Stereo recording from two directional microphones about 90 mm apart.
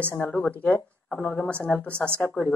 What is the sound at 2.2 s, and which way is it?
Speech, 25° left (ahead or behind).